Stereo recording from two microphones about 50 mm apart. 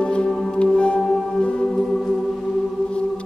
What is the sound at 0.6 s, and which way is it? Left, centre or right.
Music, left.